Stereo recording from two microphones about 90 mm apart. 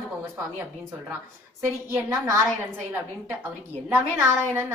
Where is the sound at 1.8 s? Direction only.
35° right (ahead or behind).